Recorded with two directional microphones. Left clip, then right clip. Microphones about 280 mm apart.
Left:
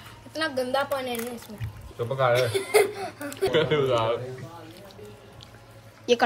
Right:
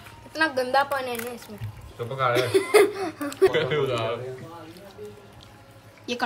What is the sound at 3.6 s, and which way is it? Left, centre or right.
Speech, centre.